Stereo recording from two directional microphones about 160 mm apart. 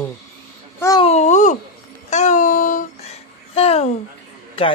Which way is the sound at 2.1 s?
50° left (ahead or behind).